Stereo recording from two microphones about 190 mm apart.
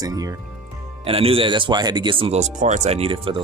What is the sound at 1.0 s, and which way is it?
Speech, 30° right (ahead or behind).